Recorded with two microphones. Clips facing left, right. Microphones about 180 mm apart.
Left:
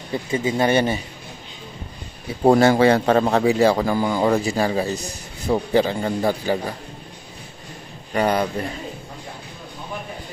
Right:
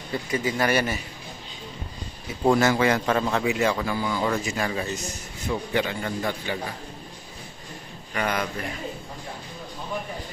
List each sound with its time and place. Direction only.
0.3 s speech: 25° left (ahead or behind)
2.4 s a man's voice: 35° left (ahead or behind)
8.1 s a man's voice: 35° left (ahead or behind)